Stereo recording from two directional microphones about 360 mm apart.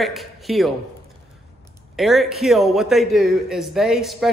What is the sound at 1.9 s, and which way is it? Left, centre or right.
A man's voice, centre.